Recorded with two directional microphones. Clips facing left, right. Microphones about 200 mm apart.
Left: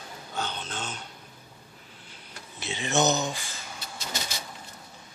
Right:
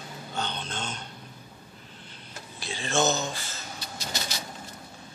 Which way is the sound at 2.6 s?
20° left (ahead or behind).